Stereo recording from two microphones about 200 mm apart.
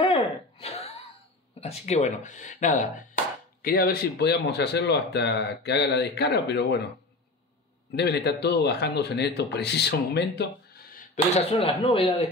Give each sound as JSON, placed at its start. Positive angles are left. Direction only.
{"t": 0.0, "sound": "a sound", "side_deg": 30}
{"t": 1.6, "sound": "speech", "side_deg": 30}
{"t": 3.6, "sound": "speech", "side_deg": 50}
{"t": 7.9, "sound": "speech", "side_deg": 55}
{"t": 11.3, "sound": "speech", "side_deg": 30}